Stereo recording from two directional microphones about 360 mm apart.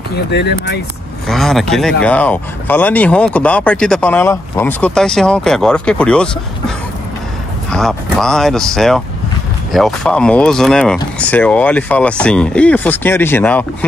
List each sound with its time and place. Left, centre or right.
0.3 s speech: left
1.2 s speech: centre
7.7 s speech: centre